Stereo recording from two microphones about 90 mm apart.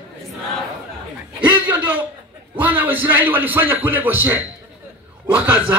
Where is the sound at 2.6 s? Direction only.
20° right (ahead or behind).